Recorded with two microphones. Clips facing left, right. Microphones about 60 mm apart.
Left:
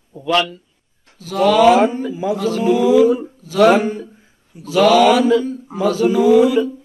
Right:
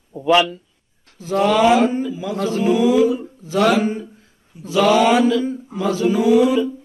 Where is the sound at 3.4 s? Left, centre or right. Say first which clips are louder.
Left 4 dB; right.